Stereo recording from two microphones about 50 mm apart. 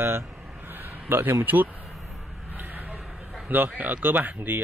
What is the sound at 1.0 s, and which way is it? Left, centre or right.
Speech, right.